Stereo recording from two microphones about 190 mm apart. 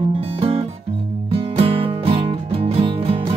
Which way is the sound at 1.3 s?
30° right (ahead or behind).